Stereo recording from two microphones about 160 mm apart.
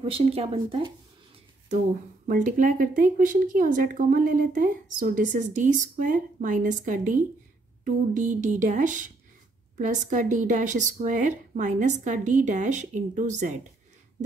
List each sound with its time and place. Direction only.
0.0 s speech: 40° right (ahead or behind)
2.2 s speech: 55° right (ahead or behind)